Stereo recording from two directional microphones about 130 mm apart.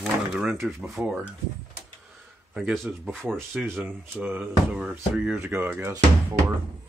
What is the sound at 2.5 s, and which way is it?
Speech, centre (ahead or behind).